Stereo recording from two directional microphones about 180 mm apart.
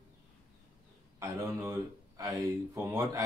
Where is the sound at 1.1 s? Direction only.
15° right (ahead or behind).